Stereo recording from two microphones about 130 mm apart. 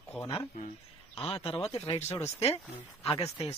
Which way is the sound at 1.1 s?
45° left (ahead or behind).